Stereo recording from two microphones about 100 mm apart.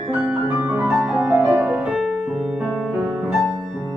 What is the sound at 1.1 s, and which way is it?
Music, 10° right (ahead or behind).